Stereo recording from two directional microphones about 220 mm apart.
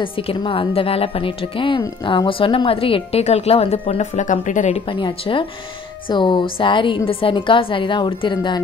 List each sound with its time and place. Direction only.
0.0 s speech: 25° left (ahead or behind)